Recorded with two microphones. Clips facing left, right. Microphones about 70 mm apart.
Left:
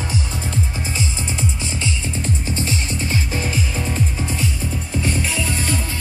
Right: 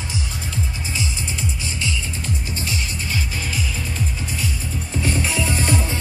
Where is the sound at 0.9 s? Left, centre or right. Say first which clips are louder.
Left 1 dB; left.